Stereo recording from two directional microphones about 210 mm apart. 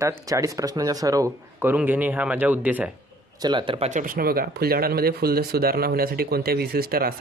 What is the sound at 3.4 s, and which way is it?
Speech, 25° right (ahead or behind).